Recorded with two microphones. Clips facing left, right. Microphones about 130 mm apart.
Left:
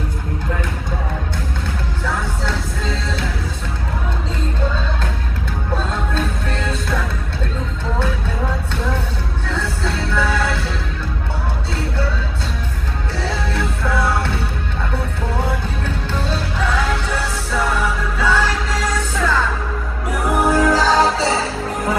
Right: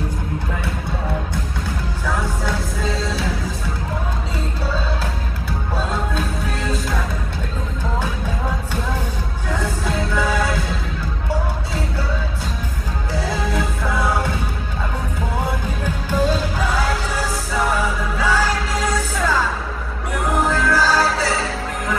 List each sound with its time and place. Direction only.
2.0 s music: 10° right (ahead or behind)
6.1 s music: 10° right (ahead or behind)
9.5 s music: 15° right (ahead or behind)
13.1 s music: 10° right (ahead or behind)
15.8 s music: 10° right (ahead or behind)
20.4 s music: 15° left (ahead or behind)